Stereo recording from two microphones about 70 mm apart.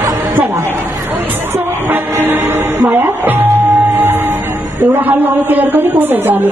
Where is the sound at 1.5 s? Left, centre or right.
Right.